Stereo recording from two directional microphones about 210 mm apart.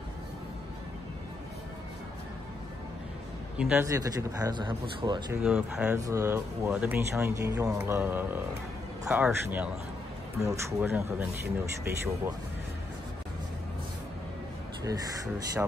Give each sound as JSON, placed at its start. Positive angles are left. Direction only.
{"t": 3.5, "sound": "a man's voice", "side_deg": -5}
{"t": 3.8, "sound": "speech", "side_deg": -15}
{"t": 5.4, "sound": "speech", "side_deg": -5}
{"t": 5.9, "sound": "speech", "side_deg": -15}
{"t": 14.8, "sound": "speech", "side_deg": -15}